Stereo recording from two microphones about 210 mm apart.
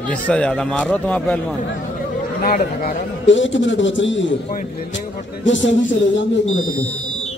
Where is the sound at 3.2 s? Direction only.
60° left (ahead or behind).